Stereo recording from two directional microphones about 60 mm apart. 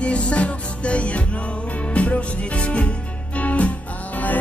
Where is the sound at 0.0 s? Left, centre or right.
Centre.